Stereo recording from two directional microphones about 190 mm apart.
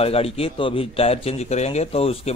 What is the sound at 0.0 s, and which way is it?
A man's voice, 30° left (ahead or behind).